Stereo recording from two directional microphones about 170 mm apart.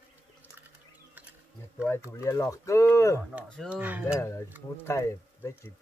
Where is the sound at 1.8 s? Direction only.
15° left (ahead or behind).